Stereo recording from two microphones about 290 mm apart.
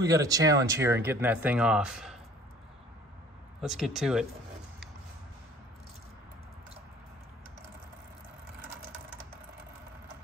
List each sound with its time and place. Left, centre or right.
0.0 s speech: centre
3.6 s speech: centre